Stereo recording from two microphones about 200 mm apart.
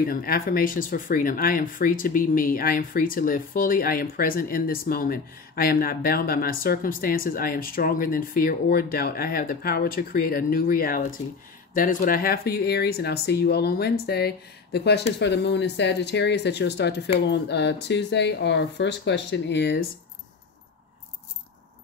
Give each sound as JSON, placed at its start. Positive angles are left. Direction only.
{"t": 0.0, "sound": "speech", "side_deg": 45}